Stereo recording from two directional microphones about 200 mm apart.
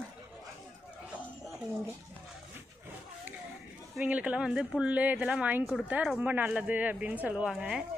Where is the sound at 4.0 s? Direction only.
5° right (ahead or behind).